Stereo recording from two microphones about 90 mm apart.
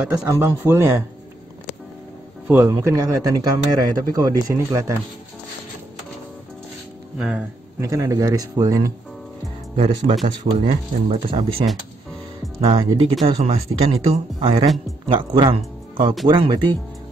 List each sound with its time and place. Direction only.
0.1 s a man's voice: 25° right (ahead or behind)
2.4 s speech: 25° right (ahead or behind)
2.8 s speech: 35° right (ahead or behind)
7.2 s speech: 10° right (ahead or behind)
7.8 s speech: 35° right (ahead or behind)
10.2 s speech: 85° right
12.6 s speech: 90° right
15.0 s speech: 70° right (ahead or behind)
16.3 s speech: 55° right (ahead or behind)